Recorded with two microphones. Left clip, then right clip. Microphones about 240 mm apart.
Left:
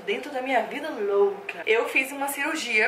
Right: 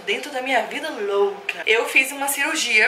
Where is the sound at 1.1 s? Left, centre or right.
Left.